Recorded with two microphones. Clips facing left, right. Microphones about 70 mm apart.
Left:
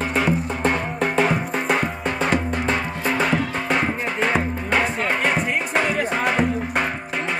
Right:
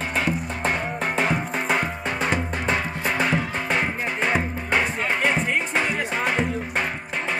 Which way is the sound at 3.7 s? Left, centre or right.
Centre.